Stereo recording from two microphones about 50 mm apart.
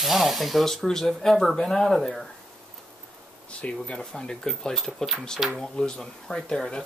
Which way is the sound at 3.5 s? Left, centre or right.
Left.